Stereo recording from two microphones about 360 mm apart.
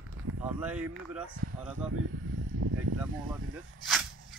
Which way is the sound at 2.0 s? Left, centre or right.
Right.